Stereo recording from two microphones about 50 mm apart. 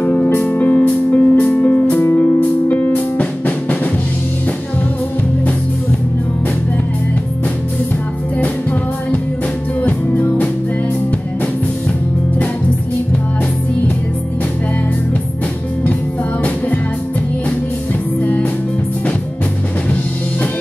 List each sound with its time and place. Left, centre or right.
0.4 s music: left
2.0 s music: left
2.7 s music: left
9.8 s music: left
16.4 s music: left
18.2 s music: left